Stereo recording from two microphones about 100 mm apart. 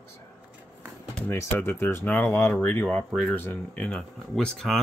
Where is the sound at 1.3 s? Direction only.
25° left (ahead or behind).